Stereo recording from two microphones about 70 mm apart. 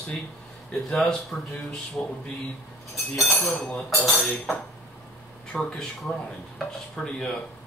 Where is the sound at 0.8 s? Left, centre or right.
Centre.